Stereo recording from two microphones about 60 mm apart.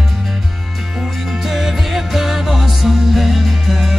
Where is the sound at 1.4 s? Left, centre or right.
Centre.